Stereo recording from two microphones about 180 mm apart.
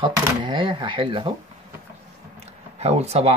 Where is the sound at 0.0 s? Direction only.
25° right (ahead or behind).